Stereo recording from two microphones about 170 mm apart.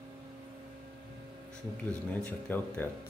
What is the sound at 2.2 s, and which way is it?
Speech, 10° left (ahead or behind).